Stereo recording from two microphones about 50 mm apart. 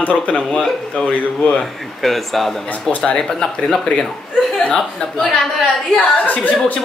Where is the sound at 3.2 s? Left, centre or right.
Centre.